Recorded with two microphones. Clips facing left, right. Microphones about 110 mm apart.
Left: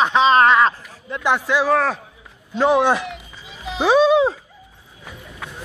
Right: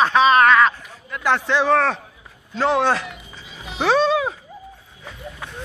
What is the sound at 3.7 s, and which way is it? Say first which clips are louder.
Music: left 3 dB; 10° left (ahead or behind).